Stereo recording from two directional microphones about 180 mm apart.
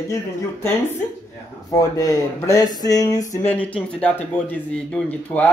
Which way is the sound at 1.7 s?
20° left (ahead or behind).